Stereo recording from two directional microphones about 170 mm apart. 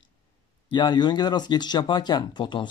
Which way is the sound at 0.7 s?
25° left (ahead or behind).